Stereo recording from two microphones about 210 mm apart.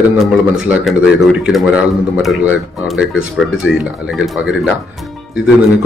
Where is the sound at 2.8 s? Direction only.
5° right (ahead or behind).